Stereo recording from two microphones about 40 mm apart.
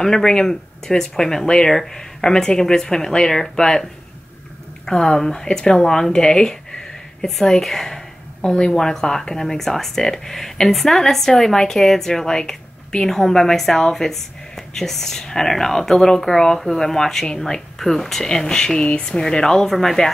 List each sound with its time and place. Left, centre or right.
0.0 s speech: centre
4.8 s speech: centre
8.4 s speech: left; by 20.1 s centre